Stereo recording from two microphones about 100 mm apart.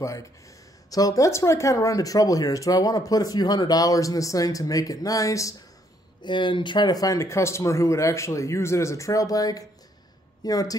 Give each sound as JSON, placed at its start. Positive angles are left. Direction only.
{"t": 0.8, "sound": "speech", "side_deg": 35}
{"t": 6.2, "sound": "speech", "side_deg": 55}